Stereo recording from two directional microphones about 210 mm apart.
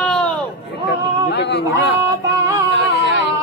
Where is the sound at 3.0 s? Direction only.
60° right (ahead or behind).